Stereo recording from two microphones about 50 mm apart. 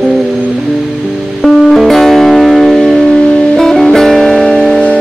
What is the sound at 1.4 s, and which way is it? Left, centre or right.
Music, centre.